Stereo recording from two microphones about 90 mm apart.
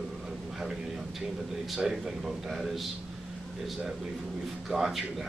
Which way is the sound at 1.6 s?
5° right (ahead or behind).